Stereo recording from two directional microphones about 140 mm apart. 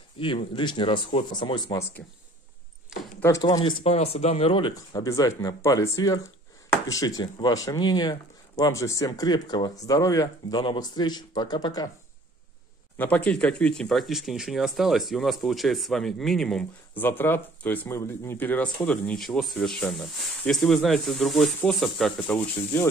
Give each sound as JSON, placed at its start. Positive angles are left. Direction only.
{"t": 0.2, "sound": "speech", "side_deg": 40}
{"t": 3.2, "sound": "speech", "side_deg": 20}
{"t": 3.4, "sound": "speech", "side_deg": 35}
{"t": 3.9, "sound": "speech", "side_deg": 50}
{"t": 4.7, "sound": "speech", "side_deg": 25}
{"t": 12.9, "sound": "speech", "side_deg": 10}
{"t": 22.3, "sound": "speech", "side_deg": 15}